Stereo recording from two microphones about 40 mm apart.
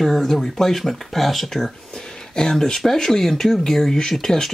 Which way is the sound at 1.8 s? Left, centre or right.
Centre.